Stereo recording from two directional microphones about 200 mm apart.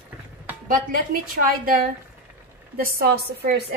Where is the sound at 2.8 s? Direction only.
50° right (ahead or behind).